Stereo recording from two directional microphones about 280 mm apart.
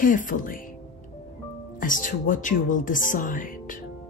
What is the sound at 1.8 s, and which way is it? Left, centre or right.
Speech, left.